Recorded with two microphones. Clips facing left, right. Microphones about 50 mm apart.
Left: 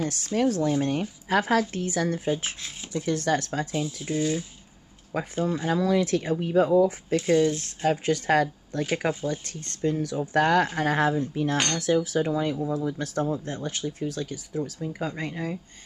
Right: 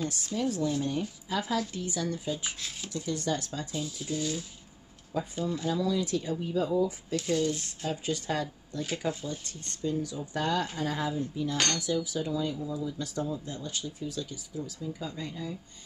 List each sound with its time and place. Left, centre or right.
0.0 s speech: left
3.0 s speech: left
3.8 s speech: left
5.1 s speech: left